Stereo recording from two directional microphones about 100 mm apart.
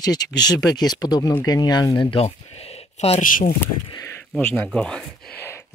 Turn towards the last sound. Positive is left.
turn(degrees=25)  # may be behind; listen again after turning